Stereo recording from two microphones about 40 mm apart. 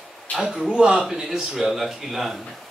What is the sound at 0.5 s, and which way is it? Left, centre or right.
Speech, right.